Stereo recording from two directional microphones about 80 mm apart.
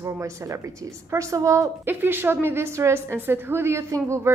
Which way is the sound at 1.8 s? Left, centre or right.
Right.